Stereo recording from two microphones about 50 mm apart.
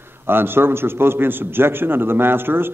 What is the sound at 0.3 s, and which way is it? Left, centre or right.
A man's voice, right.